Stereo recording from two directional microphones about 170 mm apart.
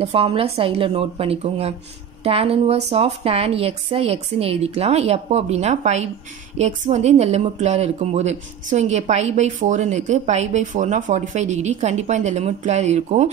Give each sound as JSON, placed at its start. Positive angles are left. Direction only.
{"t": 0.0, "sound": "a woman's voice", "side_deg": -35}